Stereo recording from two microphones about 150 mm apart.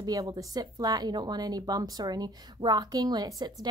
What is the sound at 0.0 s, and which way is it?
Speech, 25° right (ahead or behind).